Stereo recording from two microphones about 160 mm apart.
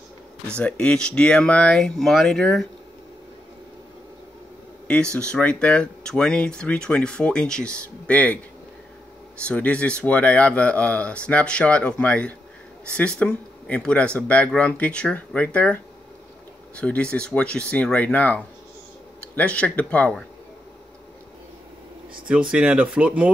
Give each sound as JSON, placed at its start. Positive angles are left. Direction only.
{"t": 0.6, "sound": "speech", "side_deg": 5}
{"t": 5.1, "sound": "speech", "side_deg": 5}
{"t": 9.4, "sound": "speech", "side_deg": 10}
{"t": 22.5, "sound": "speech", "side_deg": -10}